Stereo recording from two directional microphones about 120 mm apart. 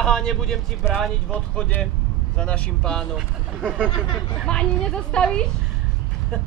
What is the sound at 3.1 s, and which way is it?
Speech, 10° right (ahead or behind).